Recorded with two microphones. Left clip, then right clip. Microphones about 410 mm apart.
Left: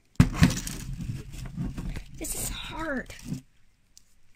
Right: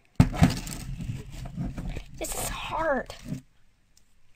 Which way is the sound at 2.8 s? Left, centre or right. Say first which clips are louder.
Right 6 dB; right.